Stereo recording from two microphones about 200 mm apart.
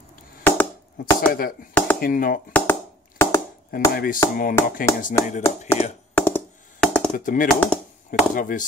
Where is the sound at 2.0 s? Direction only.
45° left (ahead or behind).